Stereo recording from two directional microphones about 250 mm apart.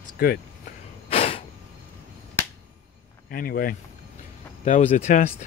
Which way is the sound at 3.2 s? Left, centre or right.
Left.